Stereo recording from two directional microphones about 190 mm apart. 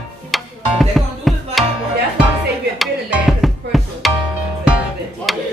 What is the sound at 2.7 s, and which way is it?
Music, centre (ahead or behind).